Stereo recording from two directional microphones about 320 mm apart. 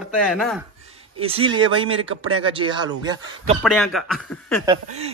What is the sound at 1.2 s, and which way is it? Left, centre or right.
Speech, centre.